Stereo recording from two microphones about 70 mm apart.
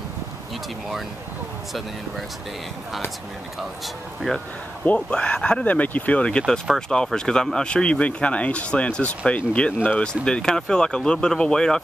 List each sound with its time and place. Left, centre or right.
3.5 s speech: centre
4.8 s speech: centre